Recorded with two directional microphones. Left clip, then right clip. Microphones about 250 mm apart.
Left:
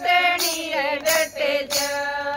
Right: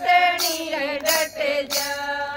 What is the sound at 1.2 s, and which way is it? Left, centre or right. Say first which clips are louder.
Mantra: left 1 dB; centre.